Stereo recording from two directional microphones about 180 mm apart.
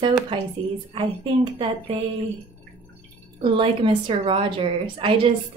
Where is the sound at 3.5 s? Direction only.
30° right (ahead or behind).